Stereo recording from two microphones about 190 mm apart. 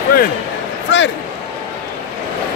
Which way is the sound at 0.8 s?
75° left (ahead or behind).